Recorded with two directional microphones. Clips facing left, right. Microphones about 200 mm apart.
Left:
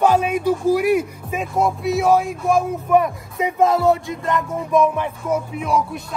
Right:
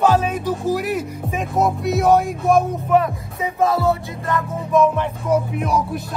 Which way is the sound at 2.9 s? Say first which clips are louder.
Left 1 dB; 15° left (ahead or behind).